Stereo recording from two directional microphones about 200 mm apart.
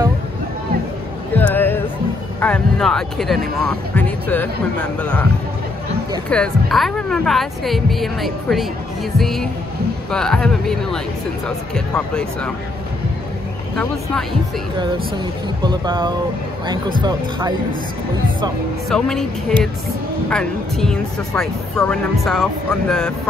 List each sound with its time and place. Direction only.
1.3 s a sound: 10° left (ahead or behind)
2.4 s speech: 5° left (ahead or behind)
6.2 s speech: 5° left (ahead or behind)
15.6 s speech: 20° right (ahead or behind)
18.9 s speech: 5° left (ahead or behind)
20.2 s speech: 5° left (ahead or behind)